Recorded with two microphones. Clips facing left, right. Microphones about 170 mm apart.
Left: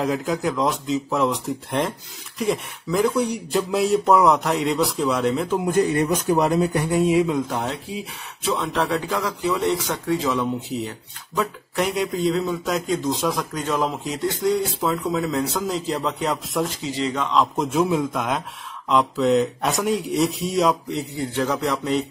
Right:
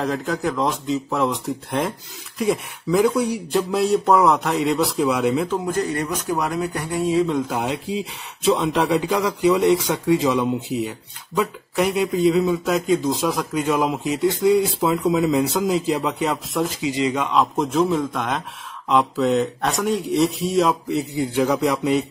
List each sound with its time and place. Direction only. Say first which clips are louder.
0.0 s speech: even; 5° left (ahead or behind)
5.7 s speech: left 4 dB; 20° left (ahead or behind)
7.3 s a man's voice: right 2 dB; 10° right (ahead or behind)